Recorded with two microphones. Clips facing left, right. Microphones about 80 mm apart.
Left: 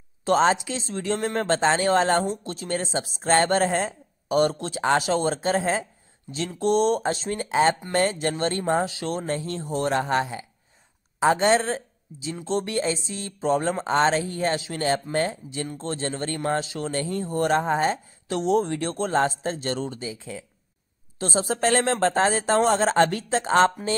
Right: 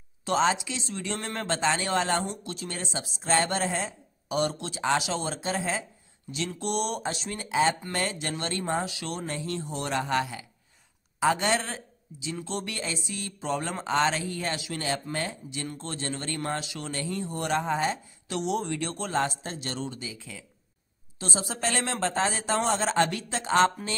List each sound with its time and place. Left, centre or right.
0.2 s speech: left
6.3 s speech: left